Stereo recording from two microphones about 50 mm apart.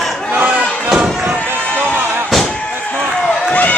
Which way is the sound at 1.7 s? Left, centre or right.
Right.